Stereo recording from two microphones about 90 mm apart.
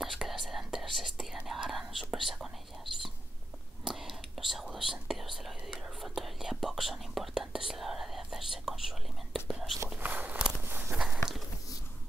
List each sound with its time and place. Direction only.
0.0 s whispering: centre (ahead or behind)
4.6 s speech: 5° right (ahead or behind)
5.9 s whispering: centre (ahead or behind)
9.9 s walk: 20° right (ahead or behind)
10.6 s a sound: 20° right (ahead or behind)